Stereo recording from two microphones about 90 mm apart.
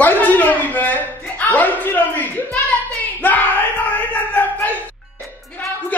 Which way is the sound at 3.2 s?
20° left (ahead or behind).